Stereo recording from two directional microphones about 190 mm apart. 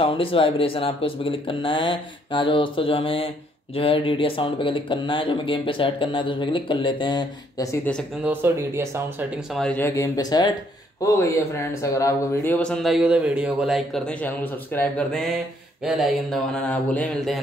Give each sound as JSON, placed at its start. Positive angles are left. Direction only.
{"t": 0.0, "sound": "speech", "side_deg": 30}
{"t": 8.2, "sound": "speech", "side_deg": -10}
{"t": 9.5, "sound": "speech", "side_deg": 5}